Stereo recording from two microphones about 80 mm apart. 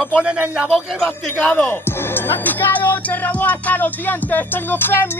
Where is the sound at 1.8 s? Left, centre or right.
Left.